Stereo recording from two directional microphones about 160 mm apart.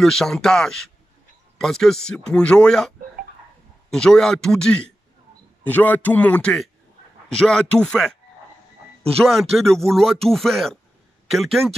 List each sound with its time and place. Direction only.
0.0 s speech: 5° left (ahead or behind)
3.9 s a man's voice: 5° left (ahead or behind)
9.3 s speech: centre (ahead or behind)